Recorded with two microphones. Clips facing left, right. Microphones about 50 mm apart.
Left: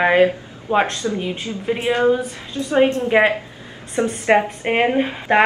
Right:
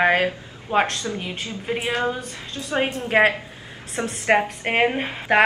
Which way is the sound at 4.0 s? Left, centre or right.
Centre.